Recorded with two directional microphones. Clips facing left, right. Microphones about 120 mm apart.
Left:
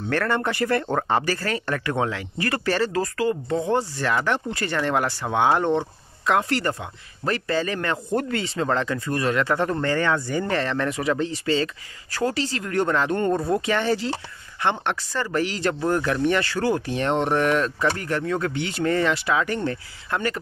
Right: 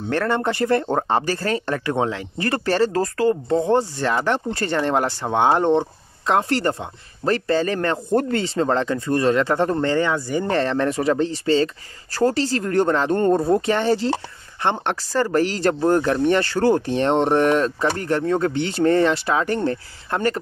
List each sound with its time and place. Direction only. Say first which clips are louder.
0.1 s speech: right 3 dB; 25° right (ahead or behind)
10.1 s speech: right 2 dB; 10° right (ahead or behind)
10.4 s speech: right 4 dB; 30° right (ahead or behind)